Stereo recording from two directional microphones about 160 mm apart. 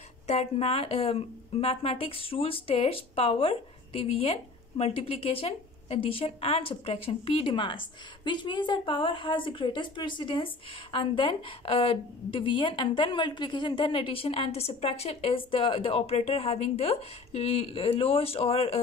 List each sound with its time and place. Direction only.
0.3 s speech: 40° left (ahead or behind)